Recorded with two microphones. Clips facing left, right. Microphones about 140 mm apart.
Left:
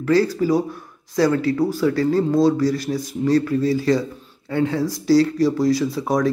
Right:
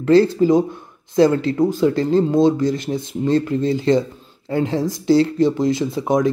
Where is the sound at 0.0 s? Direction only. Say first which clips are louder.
Right 4 dB; 25° right (ahead or behind).